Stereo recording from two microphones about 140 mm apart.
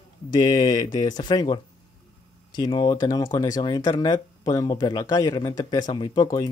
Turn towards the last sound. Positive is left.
turn(degrees=25)  # may be behind; listen again after turning